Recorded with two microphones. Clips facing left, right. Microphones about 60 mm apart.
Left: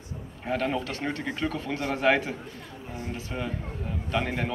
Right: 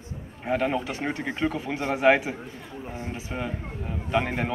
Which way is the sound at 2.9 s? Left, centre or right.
Right.